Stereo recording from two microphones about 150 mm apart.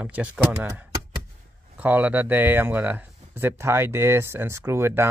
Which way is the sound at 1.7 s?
10° right (ahead or behind).